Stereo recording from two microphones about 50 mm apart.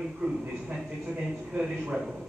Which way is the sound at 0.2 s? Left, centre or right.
Centre.